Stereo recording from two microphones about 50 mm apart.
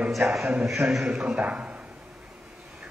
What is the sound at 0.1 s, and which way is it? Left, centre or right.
A man's voice, centre.